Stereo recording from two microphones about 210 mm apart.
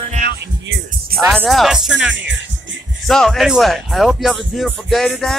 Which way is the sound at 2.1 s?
60° right (ahead or behind).